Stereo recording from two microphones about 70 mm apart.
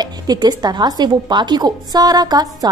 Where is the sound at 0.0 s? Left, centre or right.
Right.